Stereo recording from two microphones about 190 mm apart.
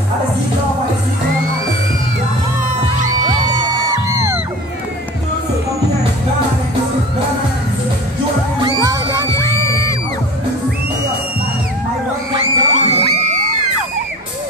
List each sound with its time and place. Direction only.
3.3 s music: 20° right (ahead or behind)
8.5 s music: 20° right (ahead or behind)
12.3 s music: 20° right (ahead or behind)
12.7 s music: 35° right (ahead or behind)